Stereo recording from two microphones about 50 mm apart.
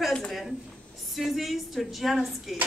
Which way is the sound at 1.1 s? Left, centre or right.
Centre.